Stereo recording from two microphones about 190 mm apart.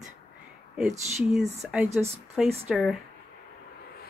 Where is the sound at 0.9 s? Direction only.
35° right (ahead or behind).